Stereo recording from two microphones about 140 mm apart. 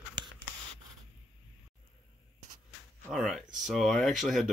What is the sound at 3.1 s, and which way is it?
Speech, centre (ahead or behind).